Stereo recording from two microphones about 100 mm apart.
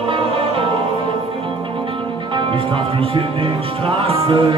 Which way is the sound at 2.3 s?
65° right (ahead or behind).